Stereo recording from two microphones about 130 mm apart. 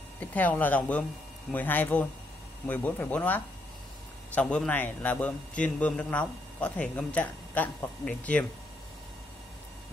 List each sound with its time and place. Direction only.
0.2 s a man's voice: 15° left (ahead or behind)